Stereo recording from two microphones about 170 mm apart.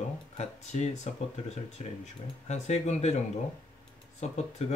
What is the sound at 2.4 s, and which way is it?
Speech, 40° left (ahead or behind).